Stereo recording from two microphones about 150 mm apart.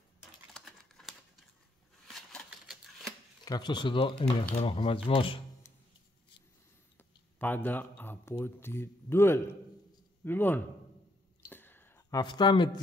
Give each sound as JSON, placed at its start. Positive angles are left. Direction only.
{"t": 0.5, "sound": "typing", "side_deg": 5}
{"t": 2.0, "sound": "scissors", "side_deg": 0}
{"t": 3.4, "sound": "speech", "side_deg": 30}
{"t": 7.0, "sound": "speech", "side_deg": 10}
{"t": 11.4, "sound": "a sound", "side_deg": 15}
{"t": 12.2, "sound": "speech", "side_deg": 30}